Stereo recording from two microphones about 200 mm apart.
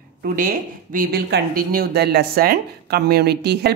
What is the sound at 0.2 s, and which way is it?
A woman's voice, 45° right (ahead or behind).